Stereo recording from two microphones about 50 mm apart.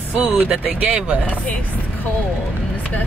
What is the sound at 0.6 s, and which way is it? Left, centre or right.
Speech, right.